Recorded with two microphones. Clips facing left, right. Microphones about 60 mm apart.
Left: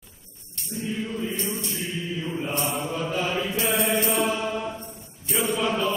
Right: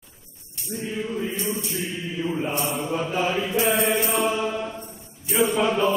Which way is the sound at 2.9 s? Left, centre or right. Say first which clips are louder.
Right 3 dB; right.